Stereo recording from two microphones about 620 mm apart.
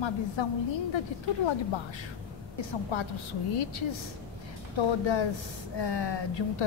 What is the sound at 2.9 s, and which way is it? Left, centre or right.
A woman's voice, left.